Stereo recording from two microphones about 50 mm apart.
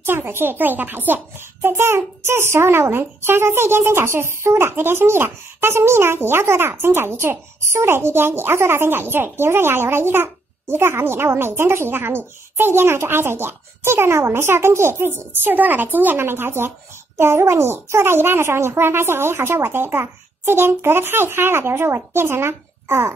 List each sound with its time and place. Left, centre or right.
0.0 s a child's voice: right
15.5 s speech: right
16.2 s speech: right
17.2 s a child's voice: right